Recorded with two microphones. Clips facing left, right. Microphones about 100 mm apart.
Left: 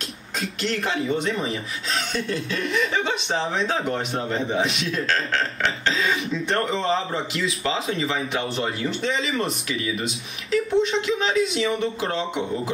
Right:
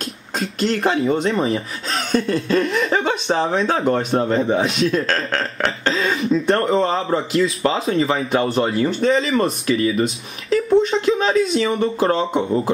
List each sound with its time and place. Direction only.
0.4 s speech: 35° right (ahead or behind)